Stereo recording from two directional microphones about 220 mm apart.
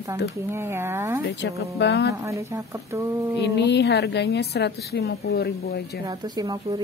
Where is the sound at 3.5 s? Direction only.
50° left (ahead or behind).